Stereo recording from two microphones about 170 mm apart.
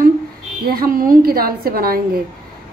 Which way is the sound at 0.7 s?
60° right (ahead or behind).